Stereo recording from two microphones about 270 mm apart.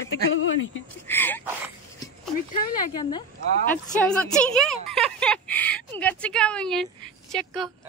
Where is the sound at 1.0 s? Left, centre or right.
Centre.